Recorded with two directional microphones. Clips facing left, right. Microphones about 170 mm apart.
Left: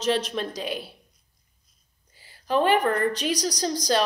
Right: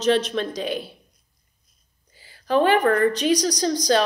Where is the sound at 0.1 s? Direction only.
5° left (ahead or behind).